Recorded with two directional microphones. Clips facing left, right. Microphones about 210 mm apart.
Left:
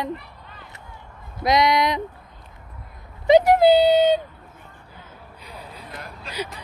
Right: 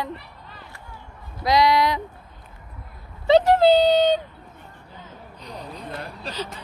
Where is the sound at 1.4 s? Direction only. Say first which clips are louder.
Even; 20° left (ahead or behind).